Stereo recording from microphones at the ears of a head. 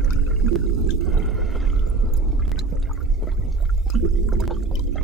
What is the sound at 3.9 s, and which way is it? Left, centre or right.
Water, right.